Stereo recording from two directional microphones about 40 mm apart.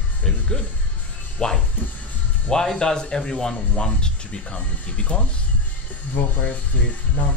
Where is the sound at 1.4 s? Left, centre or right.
Left.